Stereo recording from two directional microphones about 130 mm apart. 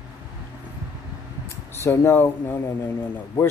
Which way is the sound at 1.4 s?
20° left (ahead or behind).